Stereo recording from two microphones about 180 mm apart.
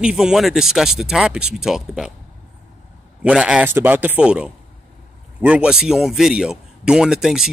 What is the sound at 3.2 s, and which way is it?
Speech, 5° right (ahead or behind).